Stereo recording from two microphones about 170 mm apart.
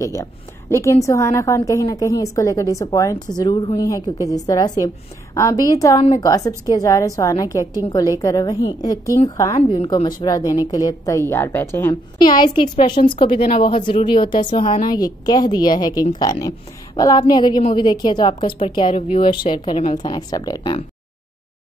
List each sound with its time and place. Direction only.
0.0 s a woman's voice: 20° left (ahead or behind)
11.9 s speech: 25° left (ahead or behind)